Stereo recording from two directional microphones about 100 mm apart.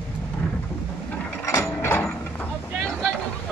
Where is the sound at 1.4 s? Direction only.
30° left (ahead or behind).